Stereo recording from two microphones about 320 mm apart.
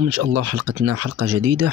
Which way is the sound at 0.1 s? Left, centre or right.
Right.